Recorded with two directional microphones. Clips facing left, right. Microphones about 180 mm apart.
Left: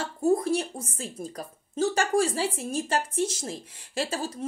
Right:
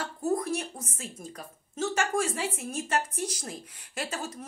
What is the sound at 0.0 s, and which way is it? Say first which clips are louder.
A woman's voice: left 5 dB; 30° left (ahead or behind).